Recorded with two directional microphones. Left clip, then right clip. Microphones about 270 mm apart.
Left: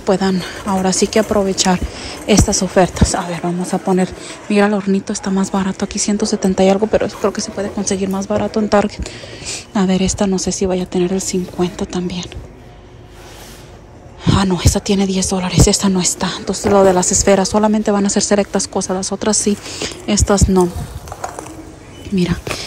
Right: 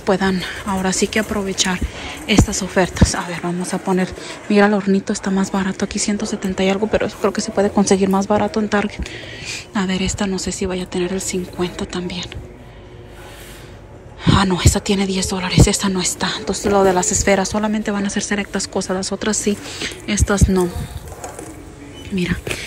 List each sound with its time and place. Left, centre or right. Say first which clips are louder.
0.0 s speech: left 2 dB; centre
14.2 s speech: even; centre
22.1 s speech: left 3 dB; centre